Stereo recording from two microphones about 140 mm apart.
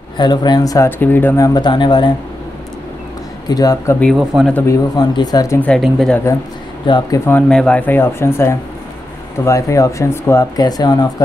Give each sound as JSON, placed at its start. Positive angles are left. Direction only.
{"t": 0.2, "sound": "speech", "side_deg": 30}
{"t": 3.4, "sound": "speech", "side_deg": 25}
{"t": 4.0, "sound": "speech", "side_deg": 0}
{"t": 4.6, "sound": "speech", "side_deg": 30}
{"t": 5.7, "sound": "speech", "side_deg": 5}
{"t": 6.8, "sound": "speech", "side_deg": 35}
{"t": 7.2, "sound": "speech", "side_deg": 10}